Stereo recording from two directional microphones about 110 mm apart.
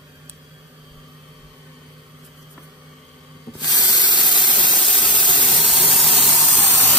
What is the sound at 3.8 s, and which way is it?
Spray, 40° left (ahead or behind).